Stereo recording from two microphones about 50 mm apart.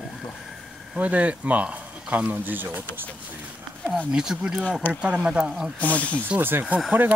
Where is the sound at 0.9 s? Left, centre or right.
Right.